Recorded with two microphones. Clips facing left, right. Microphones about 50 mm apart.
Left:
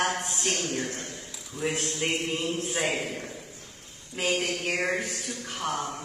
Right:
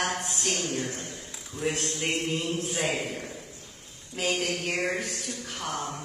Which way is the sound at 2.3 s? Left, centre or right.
Centre.